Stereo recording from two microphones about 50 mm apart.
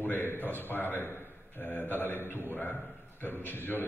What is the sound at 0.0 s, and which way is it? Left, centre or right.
A man's voice, left.